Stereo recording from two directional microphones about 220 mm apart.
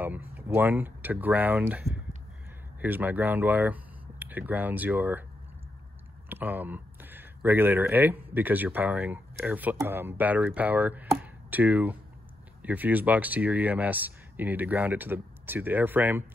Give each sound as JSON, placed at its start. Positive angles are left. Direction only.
{"t": 0.0, "sound": "speech", "side_deg": -10}
{"t": 6.2, "sound": "speech", "side_deg": -10}